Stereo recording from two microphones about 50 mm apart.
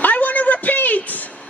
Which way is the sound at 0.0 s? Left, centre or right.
Left.